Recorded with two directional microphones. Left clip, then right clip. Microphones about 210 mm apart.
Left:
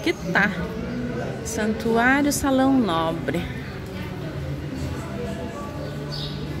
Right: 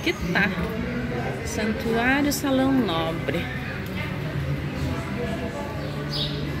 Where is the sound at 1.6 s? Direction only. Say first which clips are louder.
Left 4 dB; 15° left (ahead or behind).